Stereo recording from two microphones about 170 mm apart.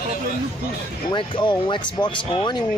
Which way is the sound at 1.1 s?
30° left (ahead or behind).